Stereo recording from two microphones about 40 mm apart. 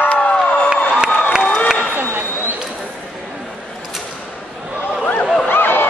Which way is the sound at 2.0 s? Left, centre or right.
Right.